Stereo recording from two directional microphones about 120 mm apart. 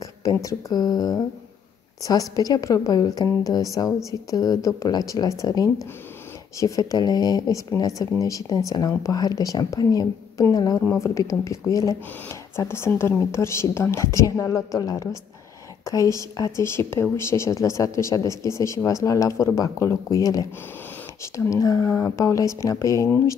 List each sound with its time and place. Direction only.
0.4 s speech: 25° left (ahead or behind)